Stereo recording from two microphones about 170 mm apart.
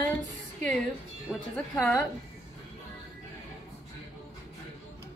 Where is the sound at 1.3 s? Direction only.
10° left (ahead or behind).